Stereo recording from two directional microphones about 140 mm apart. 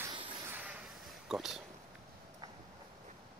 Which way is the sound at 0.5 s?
10° right (ahead or behind).